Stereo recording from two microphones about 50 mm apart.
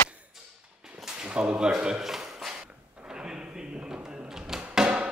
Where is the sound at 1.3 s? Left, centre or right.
Right; by 2.5 s centre.